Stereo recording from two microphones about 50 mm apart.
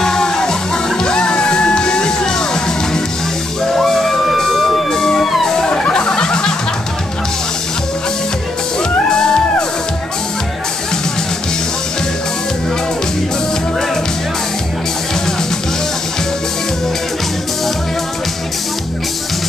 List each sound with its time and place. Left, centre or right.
0.0 s music: centre
9.1 s music: centre